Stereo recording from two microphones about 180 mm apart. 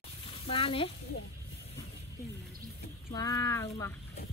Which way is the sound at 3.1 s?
20° left (ahead or behind).